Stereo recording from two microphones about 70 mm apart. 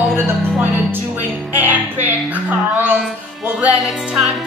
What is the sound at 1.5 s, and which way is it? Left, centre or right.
Music, right.